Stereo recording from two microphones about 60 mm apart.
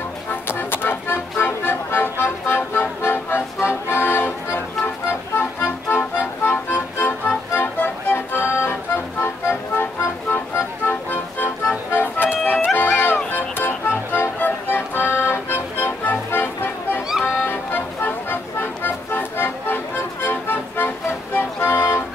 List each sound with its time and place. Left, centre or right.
0.3 s music: left